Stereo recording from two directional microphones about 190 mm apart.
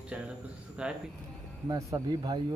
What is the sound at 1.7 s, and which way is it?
Speech, 15° right (ahead or behind).